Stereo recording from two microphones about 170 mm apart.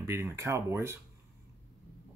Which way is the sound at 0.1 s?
15° right (ahead or behind).